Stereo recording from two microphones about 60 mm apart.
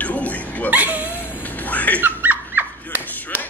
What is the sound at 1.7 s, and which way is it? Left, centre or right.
Dog, left.